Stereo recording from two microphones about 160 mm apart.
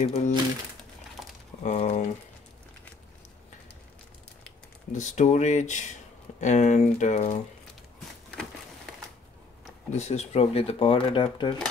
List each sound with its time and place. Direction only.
0.0 s speech: 45° left (ahead or behind)
1.6 s speech: 45° left (ahead or behind)
4.9 s speech: 50° left (ahead or behind)
9.8 s speech: 45° left (ahead or behind)